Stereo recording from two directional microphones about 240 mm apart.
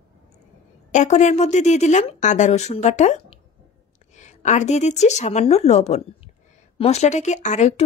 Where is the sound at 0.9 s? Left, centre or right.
Left.